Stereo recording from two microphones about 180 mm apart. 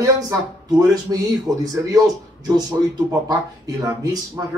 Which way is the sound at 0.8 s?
20° right (ahead or behind).